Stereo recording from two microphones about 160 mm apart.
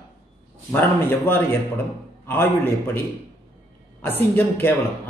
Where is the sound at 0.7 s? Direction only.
15° left (ahead or behind).